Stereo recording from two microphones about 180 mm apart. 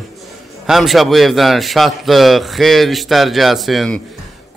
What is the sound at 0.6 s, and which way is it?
Speech, centre (ahead or behind).